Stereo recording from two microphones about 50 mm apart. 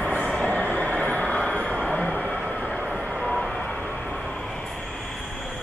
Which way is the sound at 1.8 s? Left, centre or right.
Centre.